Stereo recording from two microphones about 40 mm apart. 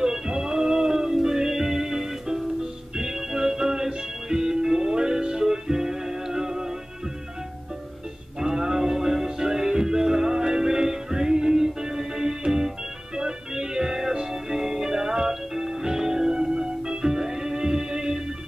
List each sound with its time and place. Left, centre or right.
0.0 s music: centre
3.0 s organ: centre
8.4 s music: centre